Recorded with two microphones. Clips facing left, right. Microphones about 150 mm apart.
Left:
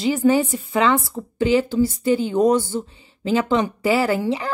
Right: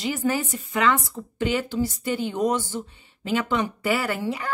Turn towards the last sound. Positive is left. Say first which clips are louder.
# left 7 dB
turn(degrees=30)  # may be behind; listen again after turning